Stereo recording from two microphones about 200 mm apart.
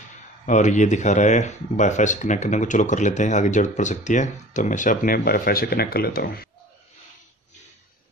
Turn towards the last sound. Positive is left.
turn(degrees=50)  # may be behind; listen again after turning